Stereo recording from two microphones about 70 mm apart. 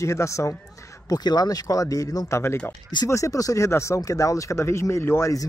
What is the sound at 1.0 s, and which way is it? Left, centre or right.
A man's voice, left.